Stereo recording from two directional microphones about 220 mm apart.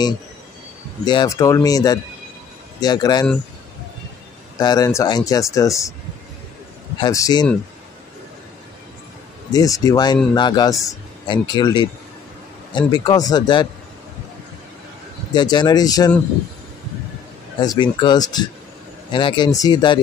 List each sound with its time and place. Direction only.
1.0 s speech: 20° left (ahead or behind)
4.6 s speech: 15° left (ahead or behind)
7.0 s speech: 15° left (ahead or behind)
9.5 s speech: 15° left (ahead or behind)
15.3 s speech: 20° left (ahead or behind)
17.6 s speech: 20° left (ahead or behind)